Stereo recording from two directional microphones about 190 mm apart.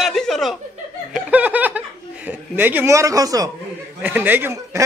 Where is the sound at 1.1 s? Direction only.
5° right (ahead or behind).